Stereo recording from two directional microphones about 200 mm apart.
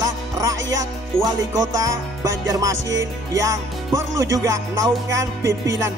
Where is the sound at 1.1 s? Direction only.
15° right (ahead or behind).